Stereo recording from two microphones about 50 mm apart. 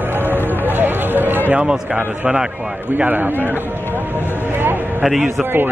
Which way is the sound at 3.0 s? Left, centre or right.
Right.